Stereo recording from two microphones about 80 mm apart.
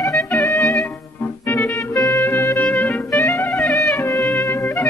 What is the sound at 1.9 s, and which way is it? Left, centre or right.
Music, left.